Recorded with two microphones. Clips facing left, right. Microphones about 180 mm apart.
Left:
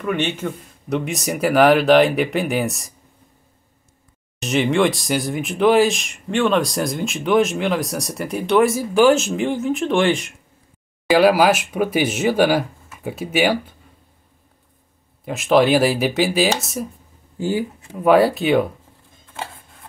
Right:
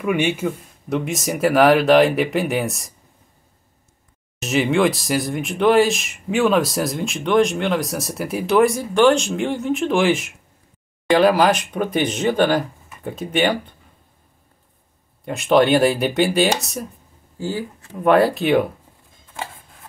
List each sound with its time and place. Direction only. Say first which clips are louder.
0.0 s speech: right 2 dB; 10° right (ahead or behind)
4.4 s speech: even; centre (ahead or behind)
15.2 s speech: even; centre (ahead or behind)
17.4 s speech: left 4 dB; 15° left (ahead or behind)
17.9 s speech: left 1 dB; centre (ahead or behind)
19.3 s rub: even; centre (ahead or behind)